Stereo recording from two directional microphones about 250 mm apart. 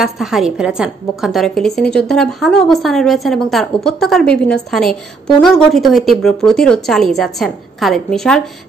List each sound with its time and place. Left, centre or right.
0.0 s a woman's voice: centre